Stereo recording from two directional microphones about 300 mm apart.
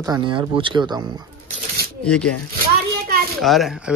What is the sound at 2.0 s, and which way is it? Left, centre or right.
Speech, centre.